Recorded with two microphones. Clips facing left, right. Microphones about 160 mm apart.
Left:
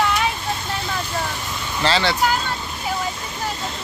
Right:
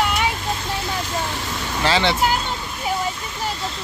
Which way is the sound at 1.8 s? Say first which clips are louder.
Right 1 dB; 15° right (ahead or behind).